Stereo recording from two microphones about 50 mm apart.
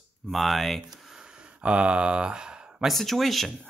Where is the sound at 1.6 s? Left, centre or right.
Right.